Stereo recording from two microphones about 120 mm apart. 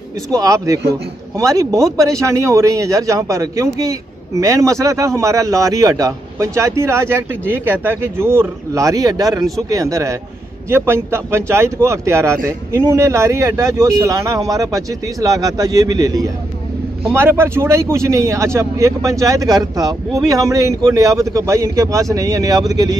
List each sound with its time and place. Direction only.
0.3 s speech: 30° right (ahead or behind)
17.1 s speech: 20° right (ahead or behind)